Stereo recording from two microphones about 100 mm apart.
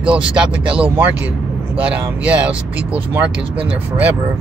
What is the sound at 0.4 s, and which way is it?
Speech, 10° right (ahead or behind).